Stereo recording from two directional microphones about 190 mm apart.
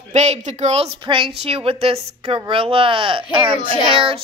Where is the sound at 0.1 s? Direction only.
35° right (ahead or behind).